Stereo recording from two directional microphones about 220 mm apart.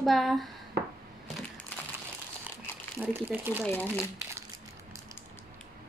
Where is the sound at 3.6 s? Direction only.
5° left (ahead or behind).